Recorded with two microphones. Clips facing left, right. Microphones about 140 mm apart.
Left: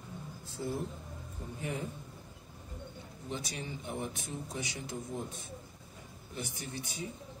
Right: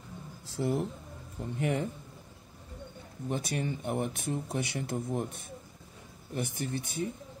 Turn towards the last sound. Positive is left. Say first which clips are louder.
# right 7 dB
turn(degrees=-55)  # may be behind; listen again after turning